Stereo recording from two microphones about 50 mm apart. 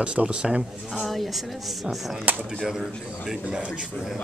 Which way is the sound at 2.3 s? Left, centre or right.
Right.